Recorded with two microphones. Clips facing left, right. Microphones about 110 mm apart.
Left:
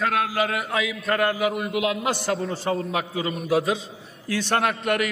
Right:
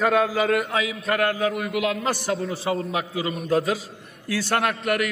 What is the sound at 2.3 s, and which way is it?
A man's voice, centre (ahead or behind).